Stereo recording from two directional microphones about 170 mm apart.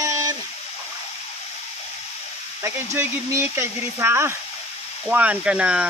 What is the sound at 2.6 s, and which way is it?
Speech, 15° right (ahead or behind).